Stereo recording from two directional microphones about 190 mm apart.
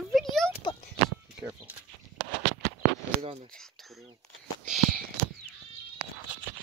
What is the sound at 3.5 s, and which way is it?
Speech, centre (ahead or behind).